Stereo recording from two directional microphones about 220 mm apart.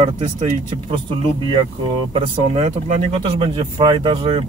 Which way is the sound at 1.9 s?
25° right (ahead or behind).